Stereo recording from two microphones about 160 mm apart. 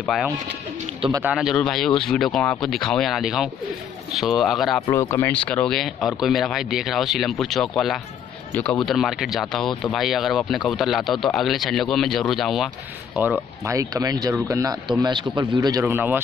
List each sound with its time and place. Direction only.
0.0 s speech: centre (ahead or behind)
4.8 s speech: 15° left (ahead or behind); by 12.6 s centre (ahead or behind)
13.7 s speech: 20° right (ahead or behind)